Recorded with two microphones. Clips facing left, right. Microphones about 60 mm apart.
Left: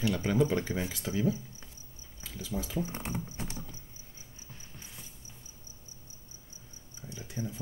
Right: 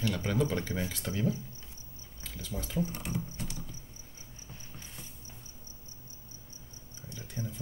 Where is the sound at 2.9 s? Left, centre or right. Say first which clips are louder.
Left 1 dB; left.